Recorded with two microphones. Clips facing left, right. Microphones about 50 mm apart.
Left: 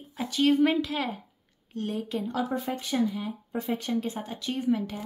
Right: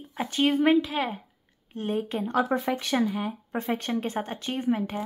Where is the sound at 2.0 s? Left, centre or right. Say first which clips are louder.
Right 3 dB; right.